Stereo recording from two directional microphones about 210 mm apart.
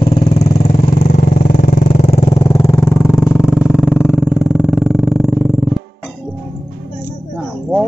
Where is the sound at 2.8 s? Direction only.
5° left (ahead or behind).